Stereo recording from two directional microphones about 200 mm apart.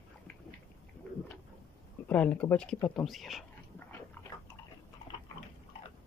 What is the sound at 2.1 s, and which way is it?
Speech, 5° left (ahead or behind).